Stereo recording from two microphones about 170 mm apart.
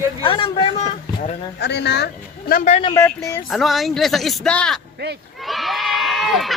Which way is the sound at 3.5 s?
Centre (ahead or behind).